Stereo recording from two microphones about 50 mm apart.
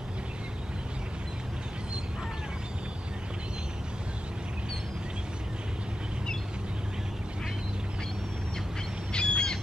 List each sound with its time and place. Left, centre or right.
9.1 s bird: centre